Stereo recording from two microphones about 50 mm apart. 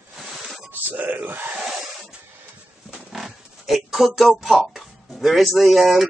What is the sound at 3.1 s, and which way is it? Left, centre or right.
Oink, centre.